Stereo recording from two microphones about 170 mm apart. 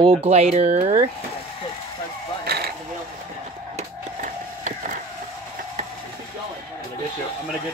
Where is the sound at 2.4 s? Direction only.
65° right (ahead or behind).